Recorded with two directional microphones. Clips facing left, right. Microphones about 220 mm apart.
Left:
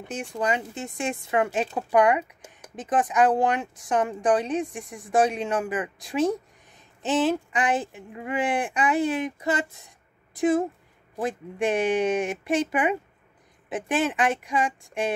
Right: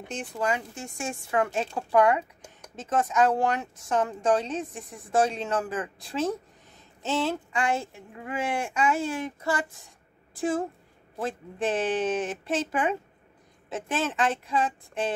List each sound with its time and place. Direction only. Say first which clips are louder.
0.1 s speech: left 2 dB; 10° left (ahead or behind)